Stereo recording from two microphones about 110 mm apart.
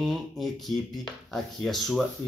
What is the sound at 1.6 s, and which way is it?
Speech, centre (ahead or behind).